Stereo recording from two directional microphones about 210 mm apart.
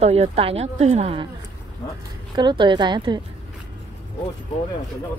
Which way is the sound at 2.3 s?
20° right (ahead or behind).